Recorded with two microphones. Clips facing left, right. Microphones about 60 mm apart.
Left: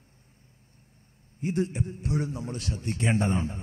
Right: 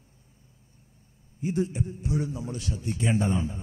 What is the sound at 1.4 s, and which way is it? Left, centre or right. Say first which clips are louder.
A man's voice: even; left.